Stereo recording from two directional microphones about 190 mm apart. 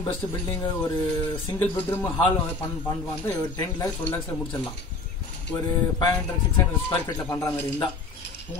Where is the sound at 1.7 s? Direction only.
10° left (ahead or behind).